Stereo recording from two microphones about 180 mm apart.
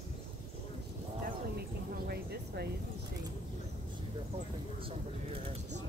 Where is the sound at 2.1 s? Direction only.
60° right (ahead or behind).